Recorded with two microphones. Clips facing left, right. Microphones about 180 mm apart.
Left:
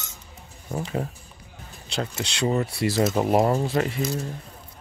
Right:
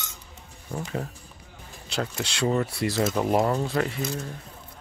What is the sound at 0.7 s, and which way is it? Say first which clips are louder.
Speech: left 3 dB; 20° left (ahead or behind).